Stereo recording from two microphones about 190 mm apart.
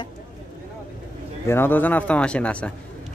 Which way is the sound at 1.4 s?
10° left (ahead or behind).